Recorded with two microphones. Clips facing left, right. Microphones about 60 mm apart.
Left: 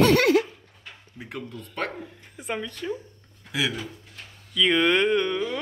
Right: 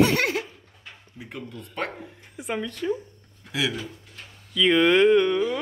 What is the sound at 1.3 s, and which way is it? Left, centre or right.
Speech, centre.